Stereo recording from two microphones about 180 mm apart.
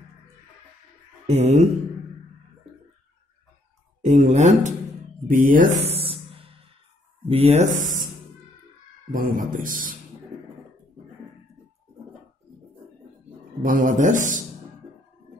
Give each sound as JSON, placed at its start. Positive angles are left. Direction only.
{"t": 1.2, "sound": "speech", "side_deg": -35}
{"t": 4.0, "sound": "speech", "side_deg": -40}
{"t": 5.9, "sound": "a sound", "side_deg": -30}
{"t": 7.2, "sound": "speech", "side_deg": -35}
{"t": 9.1, "sound": "speech", "side_deg": -50}
{"t": 13.6, "sound": "speech", "side_deg": -50}